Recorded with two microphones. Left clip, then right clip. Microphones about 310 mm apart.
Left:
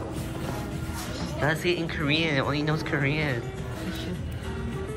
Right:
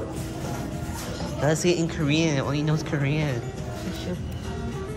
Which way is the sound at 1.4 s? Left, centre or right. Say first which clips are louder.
Right 3 dB; centre.